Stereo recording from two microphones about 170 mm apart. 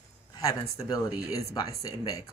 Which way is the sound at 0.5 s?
20° left (ahead or behind).